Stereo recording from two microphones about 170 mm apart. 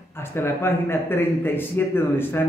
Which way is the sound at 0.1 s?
15° left (ahead or behind).